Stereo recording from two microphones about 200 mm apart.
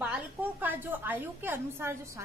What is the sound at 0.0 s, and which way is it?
A woman's voice, 10° right (ahead or behind).